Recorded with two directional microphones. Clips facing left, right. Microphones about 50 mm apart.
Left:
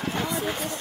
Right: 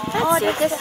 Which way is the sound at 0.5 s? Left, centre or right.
Right.